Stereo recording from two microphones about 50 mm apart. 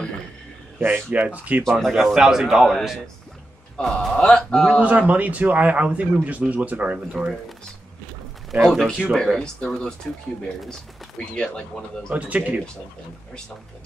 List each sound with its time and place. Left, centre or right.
0.7 s speech: right
1.1 s speech: right
1.6 s speech: centre
1.9 s speech: centre
3.7 s speech: centre
4.7 s speech: right
8.6 s speech: centre
9.4 s speech: centre
12.1 s speech: right